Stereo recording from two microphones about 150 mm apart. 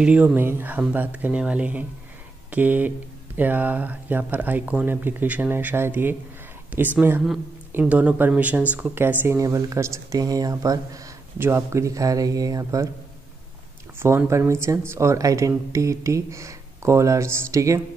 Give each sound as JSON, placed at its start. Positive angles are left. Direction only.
{"t": 0.0, "sound": "speech", "side_deg": -10}
{"t": 13.9, "sound": "speech", "side_deg": -15}